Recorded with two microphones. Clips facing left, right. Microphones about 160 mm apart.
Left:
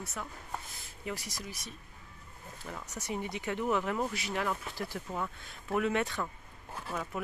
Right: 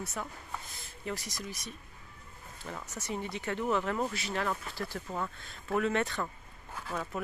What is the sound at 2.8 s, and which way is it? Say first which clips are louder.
Speech: left 1 dB; 15° left (ahead or behind).